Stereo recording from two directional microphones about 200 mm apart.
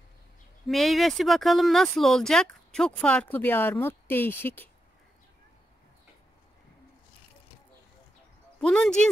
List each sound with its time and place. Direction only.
0.7 s speech: centre (ahead or behind)
8.5 s speech: 5° left (ahead or behind)